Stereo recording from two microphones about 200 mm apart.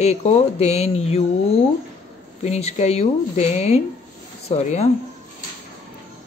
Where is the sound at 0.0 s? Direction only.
35° left (ahead or behind).